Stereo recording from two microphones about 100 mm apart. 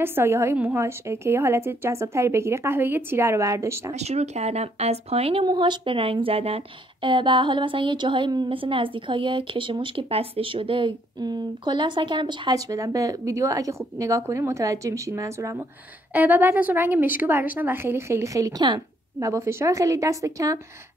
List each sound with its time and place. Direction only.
0.0 s a woman's voice: 20° right (ahead or behind)
3.9 s speech: 90° right
5.4 s a woman's voice: 50° right (ahead or behind); by 15.6 s 30° right (ahead or behind)
16.1 s a woman's voice: 20° right (ahead or behind); by 20.5 s 35° right (ahead or behind)